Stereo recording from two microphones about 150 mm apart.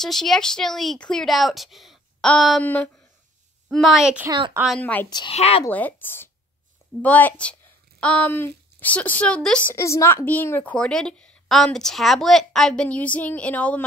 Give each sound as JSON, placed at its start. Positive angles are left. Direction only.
{"t": 0.0, "sound": "a woman's voice", "side_deg": 5}
{"t": 3.7, "sound": "speech", "side_deg": 0}
{"t": 4.3, "sound": "a woman's voice", "side_deg": -30}
{"t": 4.6, "sound": "a woman's voice", "side_deg": 10}
{"t": 5.3, "sound": "speech", "side_deg": 45}
{"t": 5.7, "sound": "a woman's voice", "side_deg": 10}
{"t": 9.8, "sound": "a woman's voice", "side_deg": 20}